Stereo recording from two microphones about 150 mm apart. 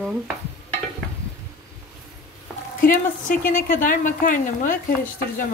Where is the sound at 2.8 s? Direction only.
65° left (ahead or behind).